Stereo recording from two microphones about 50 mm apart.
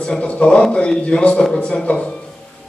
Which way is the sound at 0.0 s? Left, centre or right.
Centre.